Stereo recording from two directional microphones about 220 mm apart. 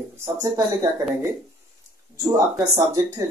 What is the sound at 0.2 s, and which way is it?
Speech, 15° right (ahead or behind).